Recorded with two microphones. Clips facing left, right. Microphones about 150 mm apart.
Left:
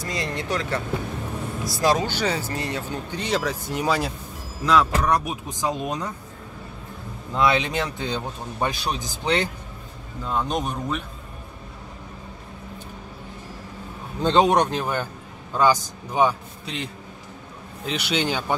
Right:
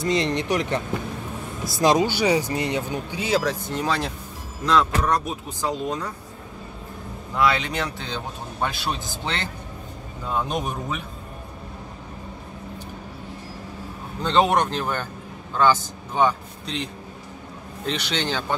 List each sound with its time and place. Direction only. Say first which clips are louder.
0.0 s speech: right 6 dB; 25° right (ahead or behind); by 3.5 s centre (ahead or behind)
3.6 s speech: left 1 dB; 10° left (ahead or behind)
7.3 s speech: left 1 dB; 20° left (ahead or behind)
10.2 s speech: left 1 dB; 5° right (ahead or behind)
14.2 s a man's voice: left 2 dB; 20° left (ahead or behind)